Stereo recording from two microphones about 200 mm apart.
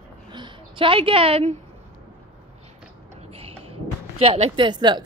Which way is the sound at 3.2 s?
30° right (ahead or behind).